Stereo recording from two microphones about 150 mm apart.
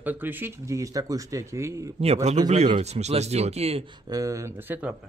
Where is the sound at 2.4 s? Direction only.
50° right (ahead or behind); by 4.9 s 10° right (ahead or behind).